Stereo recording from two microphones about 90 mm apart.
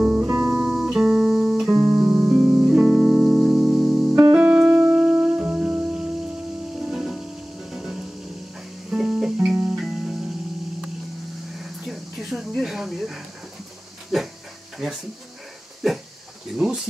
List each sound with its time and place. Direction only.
0.0 s music: 10° right (ahead or behind)
0.3 s music: 25° right (ahead or behind)
0.7 s music: 5° right (ahead or behind)
3.0 s music: centre (ahead or behind)
4.2 s music: 10° right (ahead or behind)
11.5 s a sound: 5° right (ahead or behind)
15.8 s a sound: centre (ahead or behind)
16.5 s cricket: 5° right (ahead or behind)